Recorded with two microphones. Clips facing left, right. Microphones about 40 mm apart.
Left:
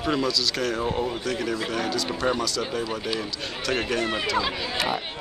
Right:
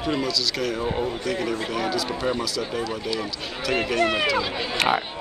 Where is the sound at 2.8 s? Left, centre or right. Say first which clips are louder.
Right 1 dB; centre.